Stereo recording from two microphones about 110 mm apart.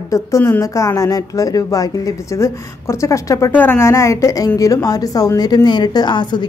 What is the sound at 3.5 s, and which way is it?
A woman's voice, 15° left (ahead or behind).